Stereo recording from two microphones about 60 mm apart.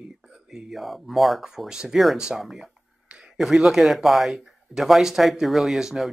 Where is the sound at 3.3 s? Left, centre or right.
Centre.